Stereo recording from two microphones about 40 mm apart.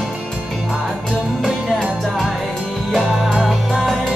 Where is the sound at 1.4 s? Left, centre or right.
Centre.